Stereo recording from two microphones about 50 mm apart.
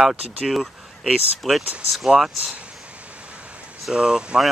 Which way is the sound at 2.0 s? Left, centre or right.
Centre.